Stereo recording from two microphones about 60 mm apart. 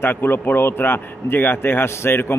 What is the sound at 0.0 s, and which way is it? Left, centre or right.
Speech, left.